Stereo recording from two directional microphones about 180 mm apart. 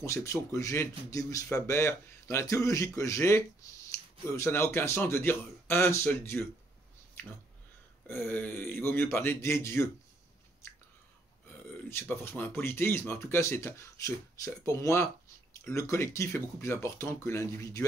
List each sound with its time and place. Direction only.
0.0 s speech: 15° left (ahead or behind)
7.2 s whispering: 10° left (ahead or behind)
8.1 s speech: 10° left (ahead or behind)
11.9 s speech: 10° left (ahead or behind)